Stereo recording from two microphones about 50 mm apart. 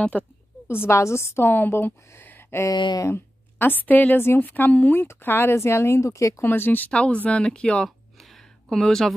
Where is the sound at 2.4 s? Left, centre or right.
Left.